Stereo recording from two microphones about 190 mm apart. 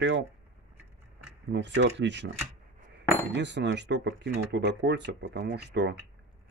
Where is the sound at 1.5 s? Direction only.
70° right (ahead or behind).